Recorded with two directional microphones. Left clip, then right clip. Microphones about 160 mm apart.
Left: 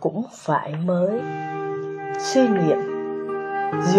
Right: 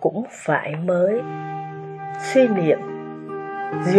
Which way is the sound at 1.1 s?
Centre (ahead or behind).